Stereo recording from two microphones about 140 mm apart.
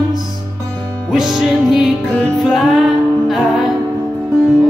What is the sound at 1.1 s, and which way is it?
Music, 5° right (ahead or behind).